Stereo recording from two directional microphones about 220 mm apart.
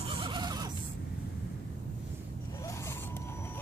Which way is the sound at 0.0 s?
25° right (ahead or behind).